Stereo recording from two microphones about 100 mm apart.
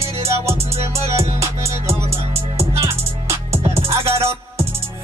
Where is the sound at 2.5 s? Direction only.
25° right (ahead or behind).